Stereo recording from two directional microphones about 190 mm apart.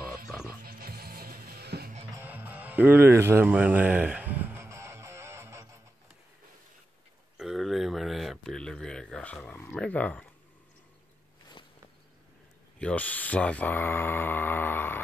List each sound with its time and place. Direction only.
0.5 s music: 50° right (ahead or behind)
2.1 s music: 10° right (ahead or behind)
7.3 s a sound: centre (ahead or behind)
12.7 s speech: 5° left (ahead or behind)